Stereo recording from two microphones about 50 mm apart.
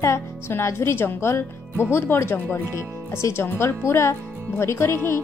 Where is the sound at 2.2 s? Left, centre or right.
Left.